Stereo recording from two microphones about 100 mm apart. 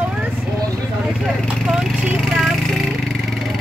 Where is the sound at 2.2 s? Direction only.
Centre (ahead or behind).